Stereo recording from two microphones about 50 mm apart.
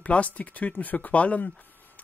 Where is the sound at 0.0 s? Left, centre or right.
Left.